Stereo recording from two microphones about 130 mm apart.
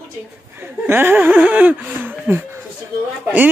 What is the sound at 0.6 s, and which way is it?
Speech, 15° right (ahead or behind).